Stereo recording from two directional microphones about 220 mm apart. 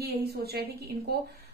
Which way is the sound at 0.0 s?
45° right (ahead or behind).